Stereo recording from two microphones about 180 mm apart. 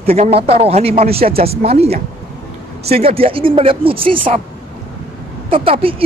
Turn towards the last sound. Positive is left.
turn(degrees=-30)  # may be behind; listen again after turning